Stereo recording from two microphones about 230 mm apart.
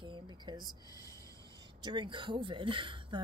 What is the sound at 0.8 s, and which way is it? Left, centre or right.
Music, centre.